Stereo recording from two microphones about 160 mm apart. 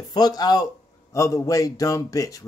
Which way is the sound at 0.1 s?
25° left (ahead or behind).